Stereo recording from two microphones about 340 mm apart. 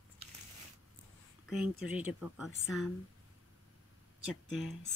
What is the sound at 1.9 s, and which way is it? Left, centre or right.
Speech, centre.